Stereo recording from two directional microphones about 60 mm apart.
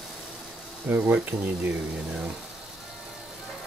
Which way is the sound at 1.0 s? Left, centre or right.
Centre.